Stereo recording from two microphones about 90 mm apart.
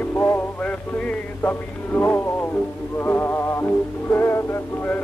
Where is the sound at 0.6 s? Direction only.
15° left (ahead or behind).